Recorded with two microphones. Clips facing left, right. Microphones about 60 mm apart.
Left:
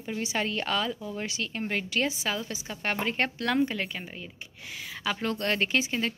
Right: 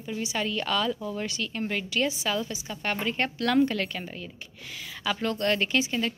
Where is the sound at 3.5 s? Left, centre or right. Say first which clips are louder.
Right 5 dB; centre.